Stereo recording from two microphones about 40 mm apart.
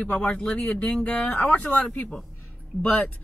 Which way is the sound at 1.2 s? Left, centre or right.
Left.